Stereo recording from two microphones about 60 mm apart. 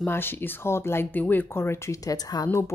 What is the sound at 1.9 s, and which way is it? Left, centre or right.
Speech, left.